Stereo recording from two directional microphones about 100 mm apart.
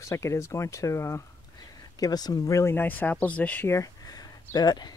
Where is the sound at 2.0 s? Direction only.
40° left (ahead or behind); by 3.7 s 15° left (ahead or behind).